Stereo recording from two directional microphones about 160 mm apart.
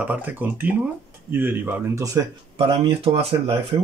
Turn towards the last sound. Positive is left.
turn(degrees=-25)  # may be behind; listen again after turning